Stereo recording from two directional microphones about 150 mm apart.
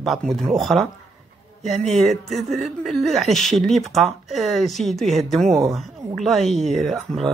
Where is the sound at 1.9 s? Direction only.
Centre (ahead or behind).